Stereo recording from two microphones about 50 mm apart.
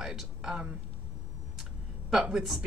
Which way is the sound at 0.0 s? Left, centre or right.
Centre.